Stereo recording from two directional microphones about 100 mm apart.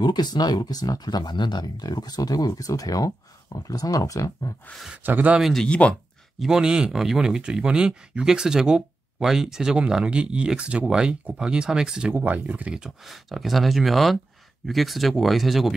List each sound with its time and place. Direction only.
0.0 s speech: 45° left (ahead or behind)
4.6 s speech: centre (ahead or behind)
4.9 s speech: 15° right (ahead or behind)
5.4 s speech: 5° left (ahead or behind)
6.4 s speech: 5° right (ahead or behind)